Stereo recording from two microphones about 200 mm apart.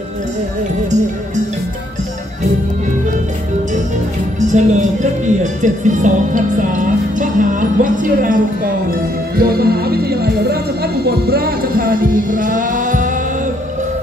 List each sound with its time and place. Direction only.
4.4 s music: 40° right (ahead or behind)
9.4 s speech: 50° right (ahead or behind)